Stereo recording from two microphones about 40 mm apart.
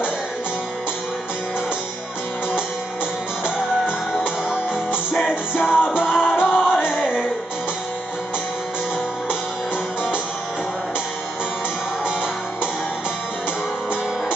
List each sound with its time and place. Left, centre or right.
3.4 s music: right
5.6 s music: left